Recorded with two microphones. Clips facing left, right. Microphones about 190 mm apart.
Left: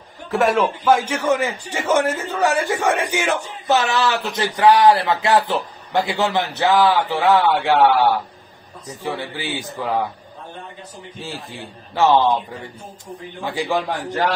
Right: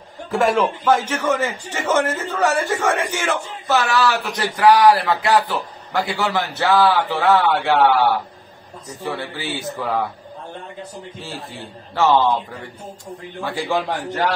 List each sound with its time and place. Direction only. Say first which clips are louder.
0.3 s a man's voice: even; centre (ahead or behind)
0.8 s a man's voice: left 3 dB; 10° left (ahead or behind)
11.1 s a man's voice: left 4 dB; 15° left (ahead or behind)
13.4 s a man's voice: even; 15° left (ahead or behind)
13.7 s a man's voice: even; centre (ahead or behind)